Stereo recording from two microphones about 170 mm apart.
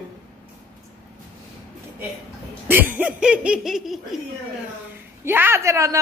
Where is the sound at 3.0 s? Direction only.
5° right (ahead or behind).